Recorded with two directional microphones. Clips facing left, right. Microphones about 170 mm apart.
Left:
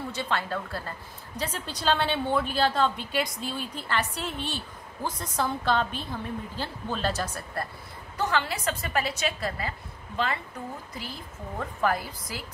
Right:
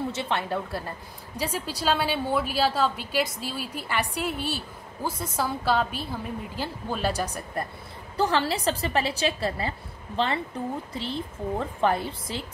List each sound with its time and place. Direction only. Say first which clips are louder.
0.1 s a woman's voice: right 2 dB; 20° right (ahead or behind)
8.2 s a woman's voice: right 4 dB; 30° right (ahead or behind)